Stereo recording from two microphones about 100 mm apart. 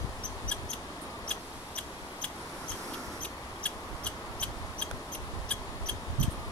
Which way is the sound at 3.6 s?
10° left (ahead or behind).